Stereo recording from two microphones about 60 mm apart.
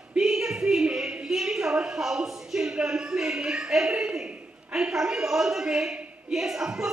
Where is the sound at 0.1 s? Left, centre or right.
Centre.